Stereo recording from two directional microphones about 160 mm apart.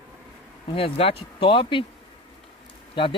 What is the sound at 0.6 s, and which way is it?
Speech, 35° left (ahead or behind).